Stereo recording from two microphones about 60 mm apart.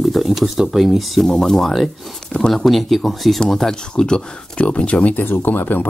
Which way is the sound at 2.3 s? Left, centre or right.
Centre.